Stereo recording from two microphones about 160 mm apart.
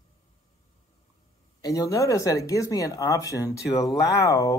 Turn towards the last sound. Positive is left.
turn(degrees=20)  # may be behind; listen again after turning